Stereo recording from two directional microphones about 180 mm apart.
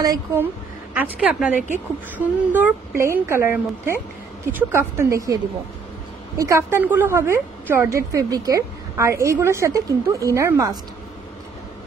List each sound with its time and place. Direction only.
0.0 s a woman's voice: 15° right (ahead or behind)